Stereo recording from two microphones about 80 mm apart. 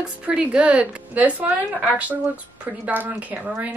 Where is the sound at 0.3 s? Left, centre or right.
Centre.